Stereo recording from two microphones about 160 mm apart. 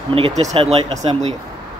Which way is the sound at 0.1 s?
40° right (ahead or behind).